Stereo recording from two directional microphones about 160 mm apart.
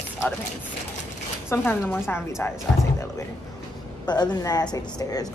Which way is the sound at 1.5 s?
10° left (ahead or behind).